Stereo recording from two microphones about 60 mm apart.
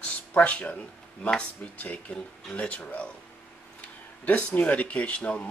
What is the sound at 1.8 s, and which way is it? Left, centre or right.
Speech, left.